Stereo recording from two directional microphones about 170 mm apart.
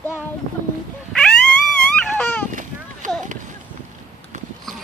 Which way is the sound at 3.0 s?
50° right (ahead or behind).